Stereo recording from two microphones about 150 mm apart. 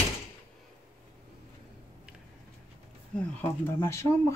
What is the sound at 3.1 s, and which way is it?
Speech, 15° left (ahead or behind).